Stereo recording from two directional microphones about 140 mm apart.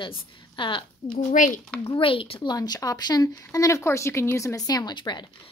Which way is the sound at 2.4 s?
30° left (ahead or behind).